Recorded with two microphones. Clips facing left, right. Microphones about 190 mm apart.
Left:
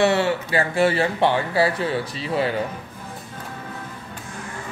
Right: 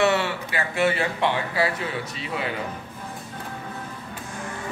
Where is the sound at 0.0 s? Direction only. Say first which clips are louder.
Left 3 dB; 30° left (ahead or behind).